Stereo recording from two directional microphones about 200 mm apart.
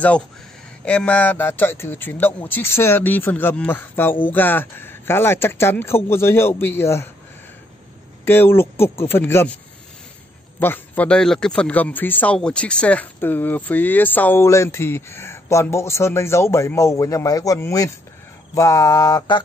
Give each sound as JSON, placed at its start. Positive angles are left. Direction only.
{"t": 0.8, "sound": "speech", "side_deg": 5}
{"t": 8.3, "sound": "speech", "side_deg": 10}
{"t": 10.6, "sound": "speech", "side_deg": 10}